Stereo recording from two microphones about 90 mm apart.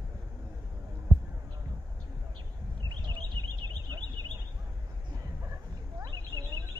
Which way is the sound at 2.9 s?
55° right (ahead or behind).